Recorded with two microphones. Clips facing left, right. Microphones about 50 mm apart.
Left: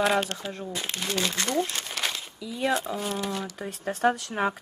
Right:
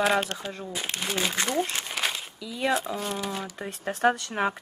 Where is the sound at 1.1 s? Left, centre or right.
Centre.